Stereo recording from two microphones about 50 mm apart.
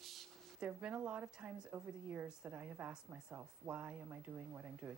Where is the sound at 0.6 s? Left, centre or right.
Right.